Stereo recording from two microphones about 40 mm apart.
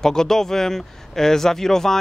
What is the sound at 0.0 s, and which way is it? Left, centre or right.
Speech, centre.